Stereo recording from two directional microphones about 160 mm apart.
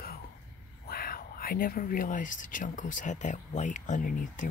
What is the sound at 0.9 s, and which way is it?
Speech, 70° left (ahead or behind).